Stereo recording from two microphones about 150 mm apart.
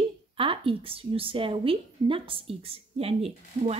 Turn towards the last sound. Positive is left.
turn(degrees=-40)  # may be behind; listen again after turning